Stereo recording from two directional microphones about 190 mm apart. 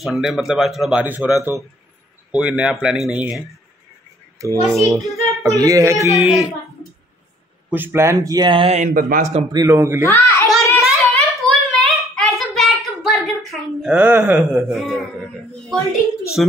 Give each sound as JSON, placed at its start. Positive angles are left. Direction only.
{"t": 0.0, "sound": "a woman's voice", "side_deg": 0}
{"t": 4.7, "sound": "speech", "side_deg": 0}
{"t": 5.4, "sound": "a woman's voice", "side_deg": -20}
{"t": 7.7, "sound": "speech", "side_deg": -10}
{"t": 9.5, "sound": "a woman's voice", "side_deg": -15}
{"t": 10.0, "sound": "a sound", "side_deg": 15}
{"t": 10.8, "sound": "a sound", "side_deg": 0}
{"t": 16.4, "sound": "speech", "side_deg": 0}